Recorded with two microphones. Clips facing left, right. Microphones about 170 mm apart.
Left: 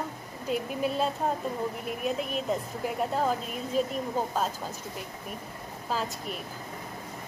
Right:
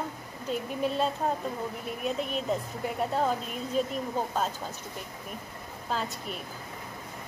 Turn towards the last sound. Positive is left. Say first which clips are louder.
# left 1 dB
turn(degrees=5)  # may be behind; listen again after turning